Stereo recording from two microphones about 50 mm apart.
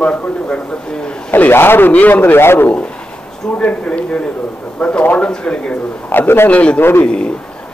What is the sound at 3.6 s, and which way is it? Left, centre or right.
Speech, left.